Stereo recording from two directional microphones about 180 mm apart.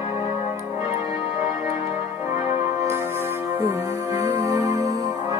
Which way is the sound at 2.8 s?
15° right (ahead or behind).